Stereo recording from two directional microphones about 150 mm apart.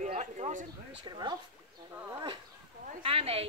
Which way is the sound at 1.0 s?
30° right (ahead or behind).